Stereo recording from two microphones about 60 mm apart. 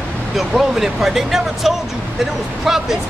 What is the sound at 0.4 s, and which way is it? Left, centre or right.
Speech, centre.